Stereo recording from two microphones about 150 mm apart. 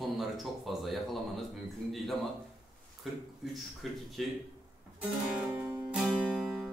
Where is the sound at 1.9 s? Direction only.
Centre (ahead or behind).